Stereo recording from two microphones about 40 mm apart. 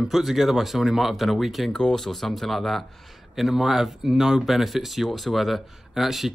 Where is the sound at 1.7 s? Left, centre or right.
Centre.